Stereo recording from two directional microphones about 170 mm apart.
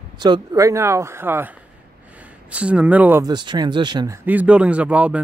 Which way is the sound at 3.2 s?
25° right (ahead or behind).